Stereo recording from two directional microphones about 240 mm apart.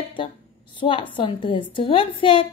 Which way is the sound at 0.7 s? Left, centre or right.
Left.